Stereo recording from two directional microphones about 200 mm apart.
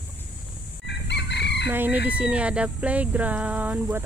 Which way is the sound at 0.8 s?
60° left (ahead or behind).